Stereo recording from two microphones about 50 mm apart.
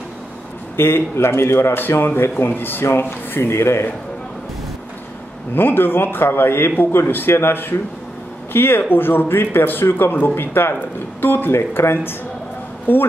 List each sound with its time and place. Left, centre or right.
0.7 s a man's voice: left
5.5 s a man's voice: left